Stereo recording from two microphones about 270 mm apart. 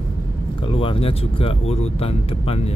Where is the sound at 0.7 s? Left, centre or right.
Centre.